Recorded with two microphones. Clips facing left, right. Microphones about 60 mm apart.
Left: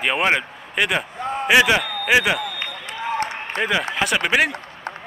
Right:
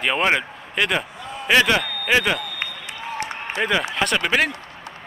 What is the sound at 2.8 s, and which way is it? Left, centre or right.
Applause, left.